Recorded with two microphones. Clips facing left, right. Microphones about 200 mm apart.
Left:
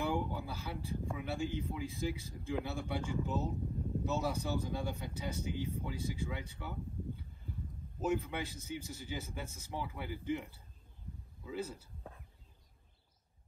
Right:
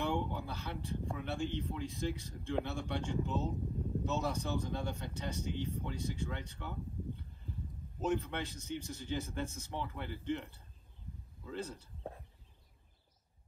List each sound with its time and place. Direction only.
0.0 s a sound: centre (ahead or behind)
1.1 s speech: 5° left (ahead or behind)
11.4 s speech: 5° left (ahead or behind)